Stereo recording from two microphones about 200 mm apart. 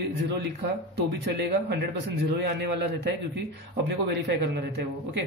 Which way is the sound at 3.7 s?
60° right (ahead or behind).